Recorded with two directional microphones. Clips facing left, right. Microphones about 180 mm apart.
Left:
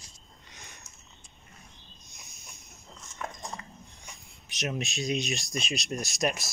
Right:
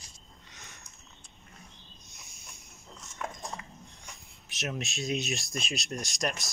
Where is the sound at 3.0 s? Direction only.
Centre (ahead or behind).